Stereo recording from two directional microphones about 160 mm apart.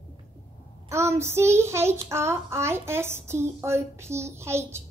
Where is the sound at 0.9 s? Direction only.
15° right (ahead or behind).